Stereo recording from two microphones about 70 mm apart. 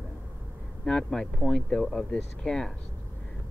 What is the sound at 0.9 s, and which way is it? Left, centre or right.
Speech, centre.